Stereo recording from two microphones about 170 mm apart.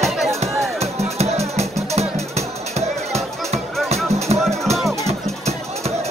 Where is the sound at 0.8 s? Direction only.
40° right (ahead or behind).